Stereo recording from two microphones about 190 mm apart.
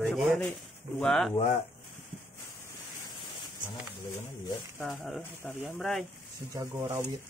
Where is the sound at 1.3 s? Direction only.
35° left (ahead or behind).